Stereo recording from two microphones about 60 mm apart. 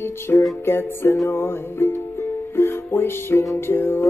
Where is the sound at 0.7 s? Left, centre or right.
Left.